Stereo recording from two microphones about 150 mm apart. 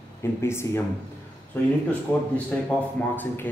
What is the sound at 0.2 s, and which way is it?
Speech, 15° left (ahead or behind).